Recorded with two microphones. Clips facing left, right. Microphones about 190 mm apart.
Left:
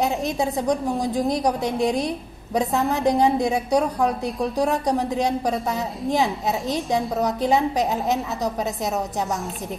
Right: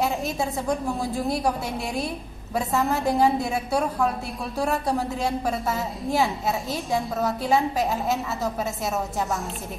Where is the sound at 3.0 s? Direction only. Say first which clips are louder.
Left 4 dB; 20° left (ahead or behind).